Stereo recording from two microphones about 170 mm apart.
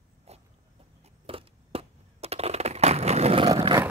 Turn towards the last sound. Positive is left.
turn(degrees=-25)  # may be behind; listen again after turning